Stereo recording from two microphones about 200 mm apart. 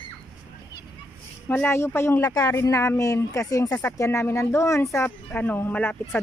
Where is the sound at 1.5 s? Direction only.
15° left (ahead or behind).